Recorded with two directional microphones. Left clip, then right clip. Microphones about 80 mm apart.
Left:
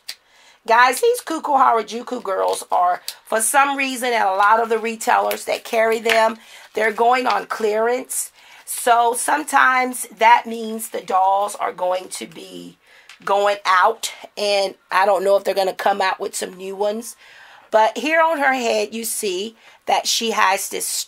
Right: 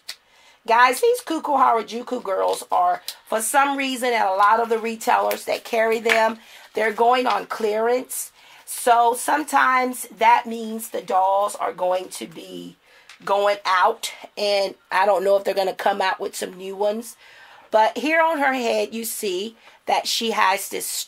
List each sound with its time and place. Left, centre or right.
0.7 s speech: left